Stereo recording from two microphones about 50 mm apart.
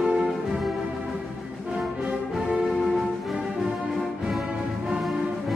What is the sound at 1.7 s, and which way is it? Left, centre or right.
Music, centre.